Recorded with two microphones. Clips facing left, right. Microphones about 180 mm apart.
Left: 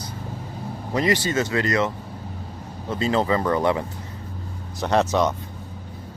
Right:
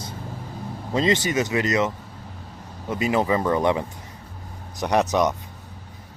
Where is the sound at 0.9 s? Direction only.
20° right (ahead or behind).